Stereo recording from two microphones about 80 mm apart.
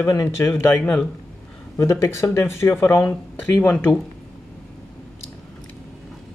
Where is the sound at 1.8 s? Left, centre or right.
Left.